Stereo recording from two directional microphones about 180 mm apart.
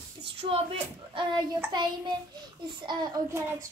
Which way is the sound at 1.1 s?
25° right (ahead or behind).